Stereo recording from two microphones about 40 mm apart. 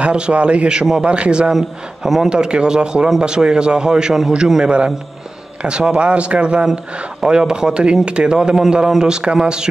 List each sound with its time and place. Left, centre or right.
0.0 s a man's voice: right
4.6 s a man's voice: right